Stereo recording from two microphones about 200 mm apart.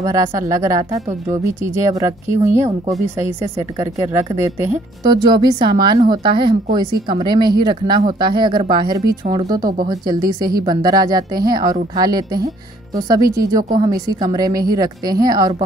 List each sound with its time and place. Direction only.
0.0 s a woman's voice: 15° right (ahead or behind)
9.6 s speech: 45° right (ahead or behind)
9.8 s a woman's voice: 20° right (ahead or behind)